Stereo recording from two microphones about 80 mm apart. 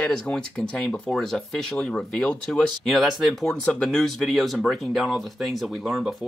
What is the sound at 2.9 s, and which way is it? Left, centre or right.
Speech, centre.